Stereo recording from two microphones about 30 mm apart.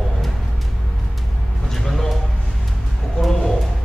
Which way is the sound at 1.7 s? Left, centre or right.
Centre.